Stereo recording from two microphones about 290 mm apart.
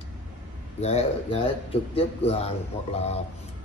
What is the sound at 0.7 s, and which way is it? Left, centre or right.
Speech, left.